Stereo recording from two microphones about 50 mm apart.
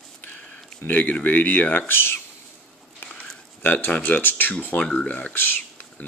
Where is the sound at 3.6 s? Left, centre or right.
Left.